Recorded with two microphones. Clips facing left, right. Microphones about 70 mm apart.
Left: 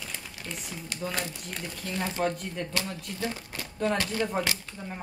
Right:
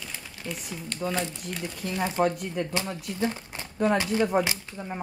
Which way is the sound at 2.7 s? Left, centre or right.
Right.